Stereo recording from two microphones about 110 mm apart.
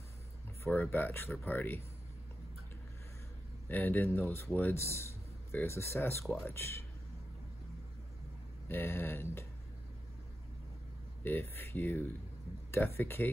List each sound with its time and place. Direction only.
0.7 s speech: 15° left (ahead or behind)
3.6 s speech: 15° left (ahead or behind)
8.6 s speech: 20° left (ahead or behind)
11.2 s speech: 20° left (ahead or behind)